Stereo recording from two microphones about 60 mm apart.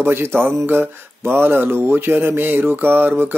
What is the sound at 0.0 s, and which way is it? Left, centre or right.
Speech, right.